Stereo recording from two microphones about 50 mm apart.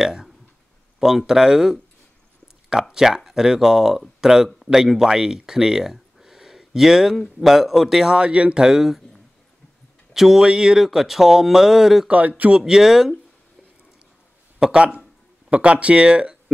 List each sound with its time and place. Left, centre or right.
0.0 s speech: centre
5.5 s a sound: centre
7.4 s speech: centre
8.2 s speech: right
8.6 s speech: centre
10.1 s speech: centre
12.1 s speech: right
12.5 s speech: centre
14.6 s speech: centre